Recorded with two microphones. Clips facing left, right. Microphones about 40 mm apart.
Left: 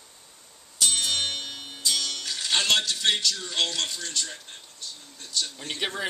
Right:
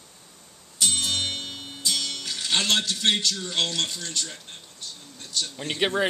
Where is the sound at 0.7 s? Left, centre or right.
Centre.